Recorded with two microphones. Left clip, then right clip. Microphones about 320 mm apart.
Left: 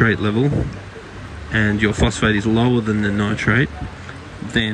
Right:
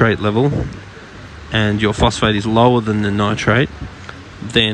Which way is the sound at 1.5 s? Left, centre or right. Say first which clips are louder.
Right 2 dB; centre.